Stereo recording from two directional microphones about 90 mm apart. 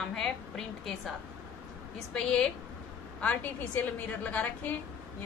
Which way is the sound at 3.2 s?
15° left (ahead or behind).